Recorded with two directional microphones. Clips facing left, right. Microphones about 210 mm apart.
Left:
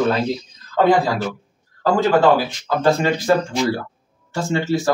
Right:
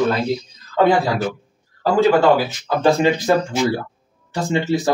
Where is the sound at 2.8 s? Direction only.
15° right (ahead or behind).